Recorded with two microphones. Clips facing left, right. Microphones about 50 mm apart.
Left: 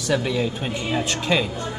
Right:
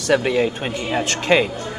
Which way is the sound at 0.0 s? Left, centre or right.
Right.